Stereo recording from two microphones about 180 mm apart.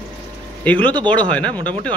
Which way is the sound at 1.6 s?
25° right (ahead or behind).